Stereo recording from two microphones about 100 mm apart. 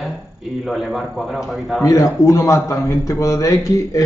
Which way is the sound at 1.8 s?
35° left (ahead or behind).